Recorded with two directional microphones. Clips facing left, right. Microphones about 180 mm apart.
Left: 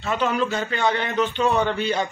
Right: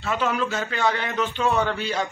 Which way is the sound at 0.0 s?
Centre (ahead or behind).